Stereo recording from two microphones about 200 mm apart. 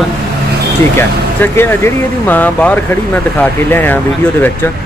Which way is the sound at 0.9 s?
10° left (ahead or behind).